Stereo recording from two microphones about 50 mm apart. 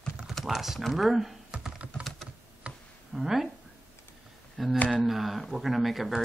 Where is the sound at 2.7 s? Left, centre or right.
Right.